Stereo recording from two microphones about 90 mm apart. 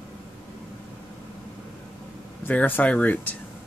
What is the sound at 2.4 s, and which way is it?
Speech, 20° left (ahead or behind).